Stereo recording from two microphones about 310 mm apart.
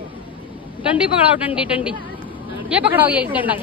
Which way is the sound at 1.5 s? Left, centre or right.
Centre.